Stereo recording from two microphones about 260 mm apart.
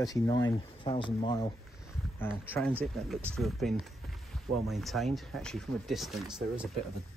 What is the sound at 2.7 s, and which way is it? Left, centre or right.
Speech, centre.